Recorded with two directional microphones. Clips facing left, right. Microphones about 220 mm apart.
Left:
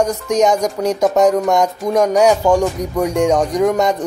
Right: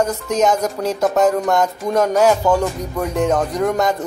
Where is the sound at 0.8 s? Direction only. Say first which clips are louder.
Left 3 dB; 5° left (ahead or behind).